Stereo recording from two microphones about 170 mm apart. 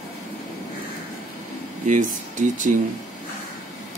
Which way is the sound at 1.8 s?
50° right (ahead or behind).